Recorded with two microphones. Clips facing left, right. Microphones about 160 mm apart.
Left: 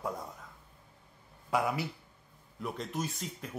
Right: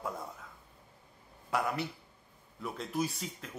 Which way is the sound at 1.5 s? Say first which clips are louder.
Left 2 dB; 5° left (ahead or behind).